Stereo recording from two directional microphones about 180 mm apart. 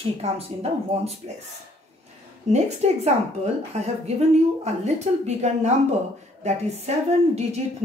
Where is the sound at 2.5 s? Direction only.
35° right (ahead or behind).